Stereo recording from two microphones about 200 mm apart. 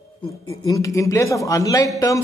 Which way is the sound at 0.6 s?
15° left (ahead or behind).